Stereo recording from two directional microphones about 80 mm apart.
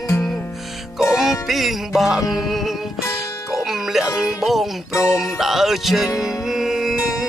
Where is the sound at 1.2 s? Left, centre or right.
Centre.